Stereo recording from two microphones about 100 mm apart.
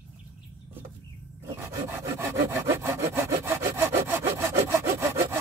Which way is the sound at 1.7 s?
30° right (ahead or behind).